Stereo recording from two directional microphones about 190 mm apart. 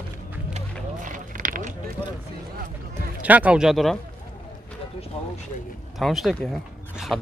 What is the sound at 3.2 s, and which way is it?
Speech, 10° right (ahead or behind).